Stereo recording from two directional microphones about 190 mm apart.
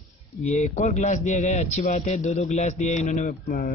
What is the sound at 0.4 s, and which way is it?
A man's voice, 40° left (ahead or behind).